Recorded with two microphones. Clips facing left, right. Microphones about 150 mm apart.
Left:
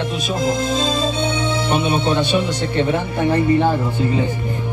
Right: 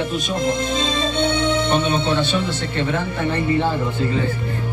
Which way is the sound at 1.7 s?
10° left (ahead or behind).